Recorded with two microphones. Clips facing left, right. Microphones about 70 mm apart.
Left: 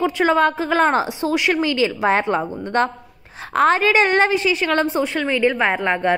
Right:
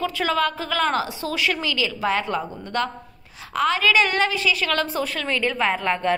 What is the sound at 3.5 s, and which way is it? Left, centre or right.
Speech, left.